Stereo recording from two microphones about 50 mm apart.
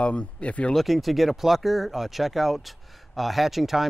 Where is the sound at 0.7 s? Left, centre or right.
Centre.